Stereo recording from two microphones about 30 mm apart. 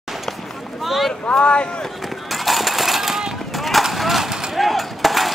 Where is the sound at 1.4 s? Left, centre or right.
Left.